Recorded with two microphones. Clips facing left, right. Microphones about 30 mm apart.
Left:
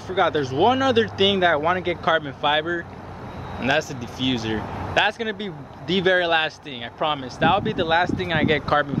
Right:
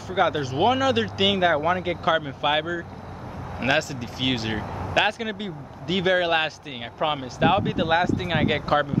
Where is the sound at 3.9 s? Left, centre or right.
Right.